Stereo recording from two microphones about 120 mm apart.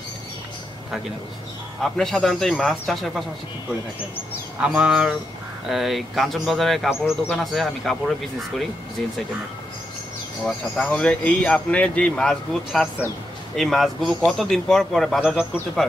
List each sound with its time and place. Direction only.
1.8 s speech: 5° left (ahead or behind)
4.6 s speech: 10° right (ahead or behind)
10.4 s speech: 5° left (ahead or behind)